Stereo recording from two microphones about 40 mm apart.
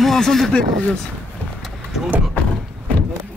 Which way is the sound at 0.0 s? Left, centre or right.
Centre.